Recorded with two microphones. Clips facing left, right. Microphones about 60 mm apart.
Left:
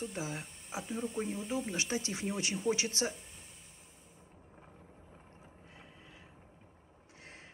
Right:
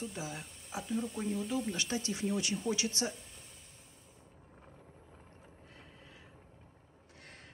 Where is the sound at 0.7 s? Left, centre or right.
Centre.